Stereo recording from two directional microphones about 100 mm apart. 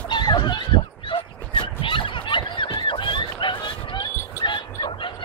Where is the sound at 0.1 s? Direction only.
50° left (ahead or behind).